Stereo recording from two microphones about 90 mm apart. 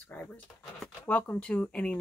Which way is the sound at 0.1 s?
20° left (ahead or behind).